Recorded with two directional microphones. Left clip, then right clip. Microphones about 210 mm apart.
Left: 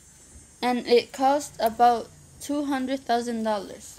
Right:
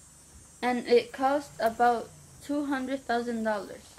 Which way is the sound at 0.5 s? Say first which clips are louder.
Left 3 dB; 35° left (ahead or behind).